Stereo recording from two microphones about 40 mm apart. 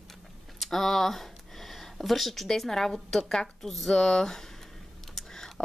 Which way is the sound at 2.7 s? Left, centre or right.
Centre.